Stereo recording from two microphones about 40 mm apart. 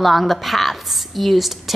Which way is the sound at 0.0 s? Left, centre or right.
Centre.